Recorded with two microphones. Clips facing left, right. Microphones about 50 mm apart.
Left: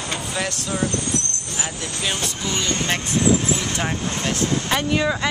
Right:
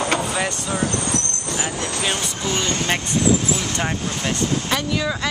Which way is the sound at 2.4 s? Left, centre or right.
Right.